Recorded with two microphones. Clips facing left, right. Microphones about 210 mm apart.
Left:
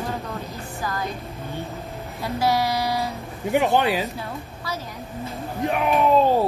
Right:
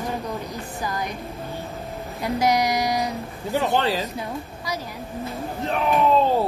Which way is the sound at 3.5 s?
15° left (ahead or behind).